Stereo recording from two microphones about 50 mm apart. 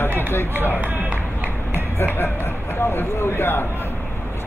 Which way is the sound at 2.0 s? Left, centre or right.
Left.